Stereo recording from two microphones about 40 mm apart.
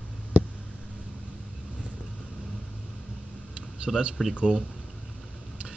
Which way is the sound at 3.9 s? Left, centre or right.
Centre.